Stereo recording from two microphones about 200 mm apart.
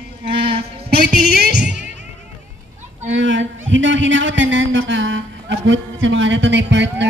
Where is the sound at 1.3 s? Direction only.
55° right (ahead or behind).